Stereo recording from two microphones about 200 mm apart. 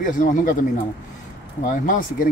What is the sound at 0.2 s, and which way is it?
Speech, 40° left (ahead or behind).